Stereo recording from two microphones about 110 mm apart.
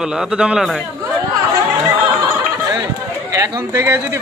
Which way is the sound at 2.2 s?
20° right (ahead or behind).